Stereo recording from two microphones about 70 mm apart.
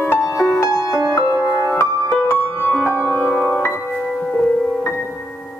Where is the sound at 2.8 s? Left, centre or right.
Right.